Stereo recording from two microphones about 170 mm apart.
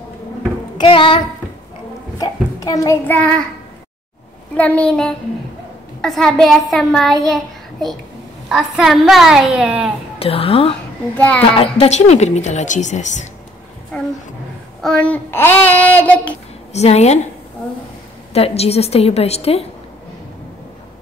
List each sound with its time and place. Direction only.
0.7 s a woman's voice: 30° left (ahead or behind)
2.1 s a sound: 20° left (ahead or behind)
3.1 s child singing: 10° left (ahead or behind)
4.6 s child singing: 10° left (ahead or behind)
5.9 s a woman's voice: 5° left (ahead or behind)
7.2 s child singing: centre (ahead or behind)
8.5 s a woman's voice: centre (ahead or behind)
10.1 s a woman's voice: 35° left (ahead or behind)
11.1 s child singing: 10° left (ahead or behind)
11.5 s a woman's voice: 35° left (ahead or behind)
14.8 s child singing: 5° left (ahead or behind)
16.7 s a woman's voice: 40° left (ahead or behind)
18.3 s a woman's voice: 35° left (ahead or behind)